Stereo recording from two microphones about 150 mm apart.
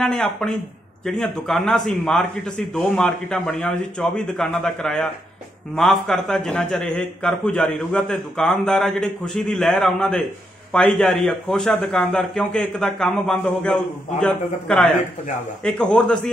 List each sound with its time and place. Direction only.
0.0 s a man's voice: 5° left (ahead or behind)